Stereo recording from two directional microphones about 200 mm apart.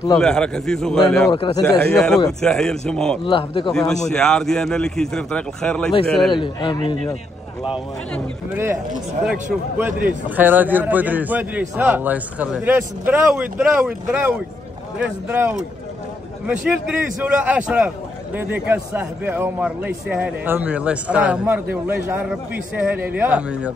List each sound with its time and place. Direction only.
0.2 s speech: 5° left (ahead or behind)
1.3 s a man's voice: 25° left (ahead or behind)
1.6 s speech: centre (ahead or behind)
3.3 s a man's voice: 20° left (ahead or behind)
3.7 s speech: 5° left (ahead or behind)
6.3 s a man's voice: 25° left (ahead or behind)
9.2 s a man's voice: 5° right (ahead or behind)
16.6 s a man's voice: 5° right (ahead or behind)